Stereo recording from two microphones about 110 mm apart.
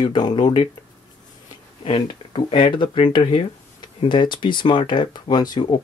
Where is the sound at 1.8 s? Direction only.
50° left (ahead or behind).